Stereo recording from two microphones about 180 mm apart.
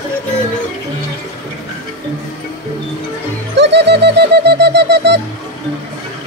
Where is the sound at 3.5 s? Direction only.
75° right (ahead or behind).